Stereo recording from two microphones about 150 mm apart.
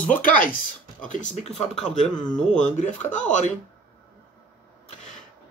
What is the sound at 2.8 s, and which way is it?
Speech, 55° left (ahead or behind).